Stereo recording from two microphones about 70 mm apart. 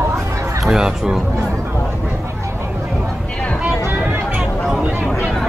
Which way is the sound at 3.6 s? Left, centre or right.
Right.